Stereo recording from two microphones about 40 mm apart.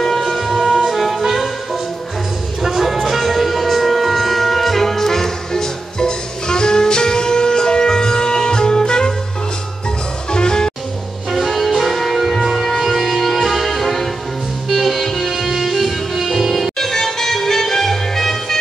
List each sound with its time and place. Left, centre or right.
0.0 s music: centre
2.6 s wind instrument: centre
10.3 s music: centre
11.2 s music: centre
16.7 s music: centre